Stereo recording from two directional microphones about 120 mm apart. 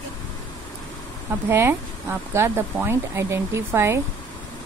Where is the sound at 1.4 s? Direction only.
20° right (ahead or behind).